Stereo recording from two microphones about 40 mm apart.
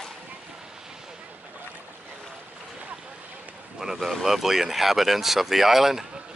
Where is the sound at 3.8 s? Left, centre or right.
Centre.